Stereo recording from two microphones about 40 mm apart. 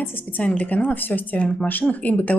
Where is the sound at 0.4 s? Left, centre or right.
Left.